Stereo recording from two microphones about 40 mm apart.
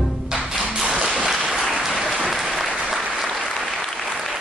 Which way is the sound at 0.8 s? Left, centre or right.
Centre.